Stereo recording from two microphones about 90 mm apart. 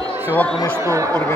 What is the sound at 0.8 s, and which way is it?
Speech, 40° right (ahead or behind).